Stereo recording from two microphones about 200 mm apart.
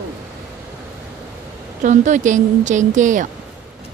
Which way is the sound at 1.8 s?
35° right (ahead or behind).